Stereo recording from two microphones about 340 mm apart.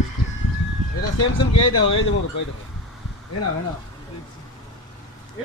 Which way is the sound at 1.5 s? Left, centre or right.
Left.